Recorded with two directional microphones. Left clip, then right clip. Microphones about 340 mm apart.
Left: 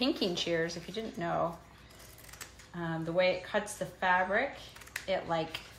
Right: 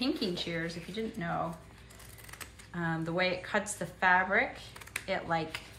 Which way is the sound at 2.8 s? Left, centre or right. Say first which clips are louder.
Left 1 dB; centre.